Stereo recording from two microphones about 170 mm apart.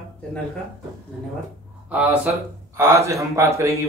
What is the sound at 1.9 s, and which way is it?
Speech, 5° right (ahead or behind).